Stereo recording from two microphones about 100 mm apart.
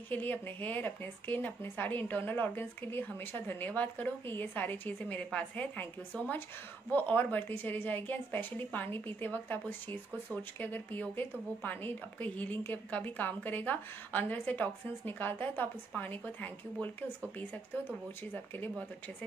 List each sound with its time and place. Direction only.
0.1 s speech: 15° left (ahead or behind)
18.3 s speech: 20° left (ahead or behind)